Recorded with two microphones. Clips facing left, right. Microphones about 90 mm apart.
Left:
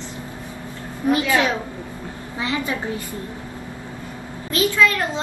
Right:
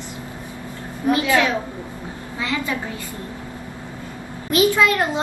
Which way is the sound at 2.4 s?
20° left (ahead or behind).